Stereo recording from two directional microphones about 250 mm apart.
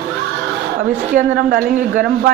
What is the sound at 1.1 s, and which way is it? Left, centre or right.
A woman's voice, right.